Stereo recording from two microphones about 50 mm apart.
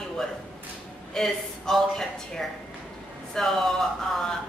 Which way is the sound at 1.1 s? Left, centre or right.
Centre.